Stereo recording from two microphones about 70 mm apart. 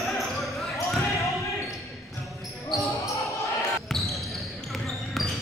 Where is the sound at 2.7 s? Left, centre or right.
Left.